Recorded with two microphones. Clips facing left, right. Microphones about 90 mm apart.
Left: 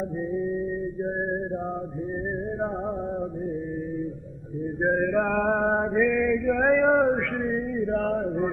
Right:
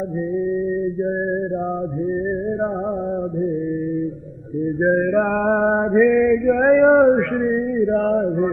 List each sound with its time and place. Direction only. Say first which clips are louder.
4.8 s mantra: right 5 dB; 5° right (ahead or behind)